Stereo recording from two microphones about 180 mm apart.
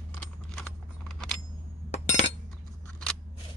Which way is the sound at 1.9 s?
40° left (ahead or behind).